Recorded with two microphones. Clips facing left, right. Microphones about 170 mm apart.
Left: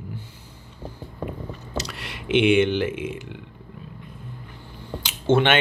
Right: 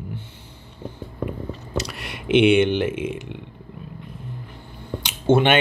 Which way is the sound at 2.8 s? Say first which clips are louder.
Right 2 dB; 65° right (ahead or behind).